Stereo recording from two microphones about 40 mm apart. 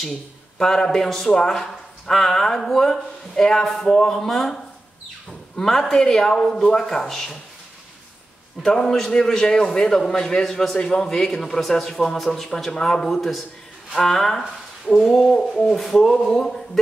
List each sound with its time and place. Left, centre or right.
0.0 s a man's voice: centre
5.6 s speech: centre
8.6 s speech: centre
15.6 s a sound: centre
16.0 s speech: centre